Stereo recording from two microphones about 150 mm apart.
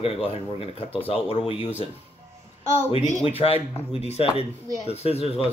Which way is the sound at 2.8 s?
45° left (ahead or behind).